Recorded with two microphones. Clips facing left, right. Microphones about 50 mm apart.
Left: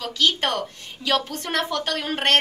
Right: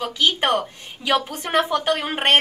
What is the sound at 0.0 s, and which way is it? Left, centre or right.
Speech, centre.